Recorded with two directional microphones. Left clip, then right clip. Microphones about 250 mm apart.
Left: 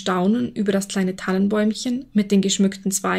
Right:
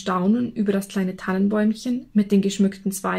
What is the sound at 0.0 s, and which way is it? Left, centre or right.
Speech, left.